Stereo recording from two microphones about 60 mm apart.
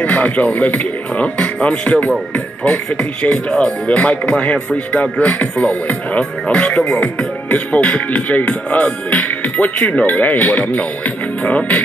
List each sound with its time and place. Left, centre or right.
0.0 s speech: left